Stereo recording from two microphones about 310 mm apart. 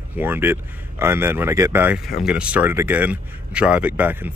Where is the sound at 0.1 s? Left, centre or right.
Centre.